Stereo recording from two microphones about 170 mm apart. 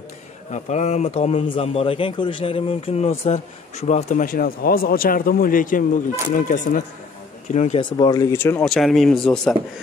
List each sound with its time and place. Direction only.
0.5 s a man's voice: 40° left (ahead or behind)
7.8 s speech: 25° left (ahead or behind)
8.6 s speech: centre (ahead or behind)